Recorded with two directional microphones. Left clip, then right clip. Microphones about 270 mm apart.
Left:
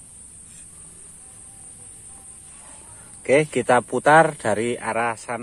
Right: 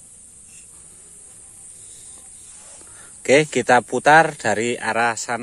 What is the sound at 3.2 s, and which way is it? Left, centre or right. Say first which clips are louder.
Speech: right 2 dB; right.